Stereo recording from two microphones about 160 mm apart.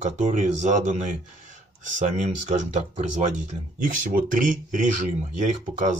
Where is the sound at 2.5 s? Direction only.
50° right (ahead or behind).